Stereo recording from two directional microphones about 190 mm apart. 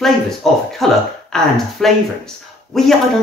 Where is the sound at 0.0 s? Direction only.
Centre (ahead or behind).